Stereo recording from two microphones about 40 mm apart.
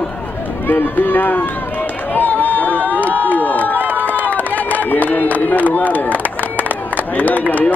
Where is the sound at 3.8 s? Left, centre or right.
Right.